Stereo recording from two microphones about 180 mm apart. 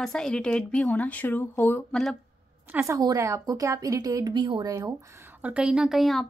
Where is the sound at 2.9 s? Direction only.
20° right (ahead or behind).